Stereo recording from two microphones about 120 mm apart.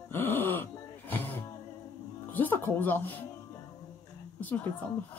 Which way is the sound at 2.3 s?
15° left (ahead or behind).